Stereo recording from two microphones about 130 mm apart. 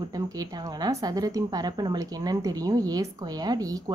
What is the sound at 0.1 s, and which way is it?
Speech, 30° right (ahead or behind).